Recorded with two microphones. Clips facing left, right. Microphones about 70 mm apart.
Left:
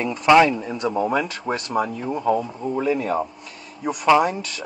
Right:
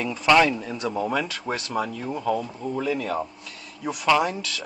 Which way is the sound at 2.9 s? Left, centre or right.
Left.